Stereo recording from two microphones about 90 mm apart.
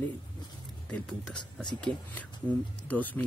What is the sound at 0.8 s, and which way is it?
Speech, 10° left (ahead or behind).